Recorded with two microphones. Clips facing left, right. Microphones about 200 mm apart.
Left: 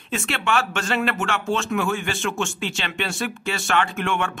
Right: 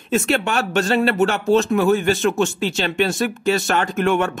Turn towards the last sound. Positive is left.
turn(degrees=-40)  # may be behind; listen again after turning